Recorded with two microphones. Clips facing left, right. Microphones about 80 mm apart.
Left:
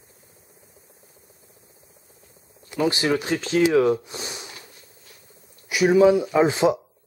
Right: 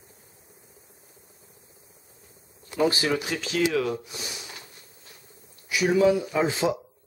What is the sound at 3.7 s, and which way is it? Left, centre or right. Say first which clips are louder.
Speech: left 8 dB; left.